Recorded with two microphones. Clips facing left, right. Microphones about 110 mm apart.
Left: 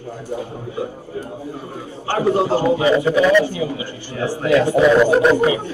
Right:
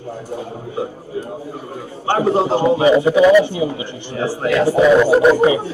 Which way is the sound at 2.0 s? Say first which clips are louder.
Right 2 dB; 25° right (ahead or behind).